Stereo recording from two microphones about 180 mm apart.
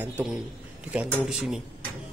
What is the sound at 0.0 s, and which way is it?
Speech, 5° right (ahead or behind).